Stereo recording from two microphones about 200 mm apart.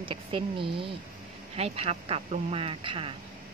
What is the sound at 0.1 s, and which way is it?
A woman's voice, 25° right (ahead or behind).